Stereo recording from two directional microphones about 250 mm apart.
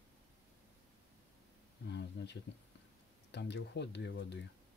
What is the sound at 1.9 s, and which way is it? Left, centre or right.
Speech, left.